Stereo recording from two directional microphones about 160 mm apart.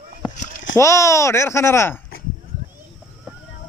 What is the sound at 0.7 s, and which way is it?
Speech, 20° left (ahead or behind).